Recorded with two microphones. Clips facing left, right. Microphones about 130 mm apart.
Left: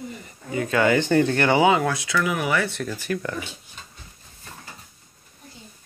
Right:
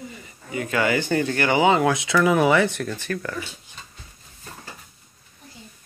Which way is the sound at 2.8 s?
10° left (ahead or behind).